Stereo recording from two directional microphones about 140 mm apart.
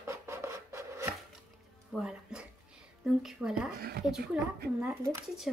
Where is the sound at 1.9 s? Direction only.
5° right (ahead or behind).